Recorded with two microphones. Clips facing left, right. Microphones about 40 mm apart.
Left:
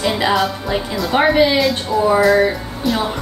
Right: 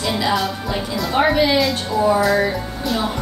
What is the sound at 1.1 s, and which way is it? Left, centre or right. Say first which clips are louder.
Speech: left 3 dB; centre.